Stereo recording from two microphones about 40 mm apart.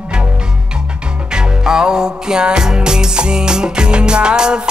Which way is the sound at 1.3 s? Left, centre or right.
Centre.